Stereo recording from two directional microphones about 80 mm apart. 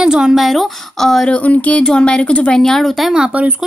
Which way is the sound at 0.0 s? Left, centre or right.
Centre.